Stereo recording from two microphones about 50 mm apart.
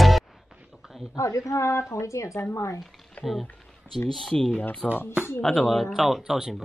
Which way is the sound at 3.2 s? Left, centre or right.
Left.